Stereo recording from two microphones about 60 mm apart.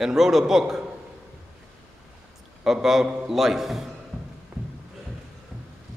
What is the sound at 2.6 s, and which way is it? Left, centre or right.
A man's voice, centre.